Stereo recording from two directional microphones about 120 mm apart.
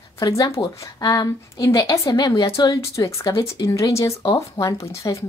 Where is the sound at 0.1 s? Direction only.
25° left (ahead or behind).